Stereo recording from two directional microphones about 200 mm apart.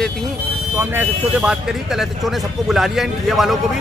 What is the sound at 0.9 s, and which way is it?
Speech, 10° right (ahead or behind).